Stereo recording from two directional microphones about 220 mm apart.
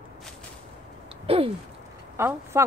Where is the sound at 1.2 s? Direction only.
25° right (ahead or behind).